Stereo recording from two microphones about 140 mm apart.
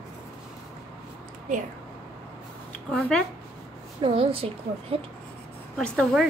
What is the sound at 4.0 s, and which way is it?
A woman's voice, 40° right (ahead or behind).